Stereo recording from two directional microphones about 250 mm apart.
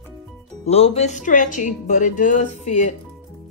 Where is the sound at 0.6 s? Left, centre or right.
Left.